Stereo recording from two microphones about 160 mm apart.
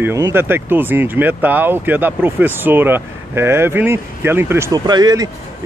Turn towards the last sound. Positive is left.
turn(degrees=-25)  # may be behind; listen again after turning